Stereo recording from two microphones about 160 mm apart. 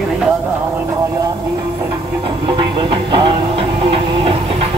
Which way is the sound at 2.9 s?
30° right (ahead or behind).